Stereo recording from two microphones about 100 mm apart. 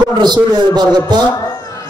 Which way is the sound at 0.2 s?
45° right (ahead or behind).